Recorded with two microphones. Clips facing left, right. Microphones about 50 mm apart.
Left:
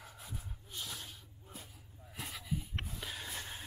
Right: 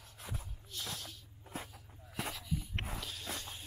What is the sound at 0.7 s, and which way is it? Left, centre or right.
Snake, centre.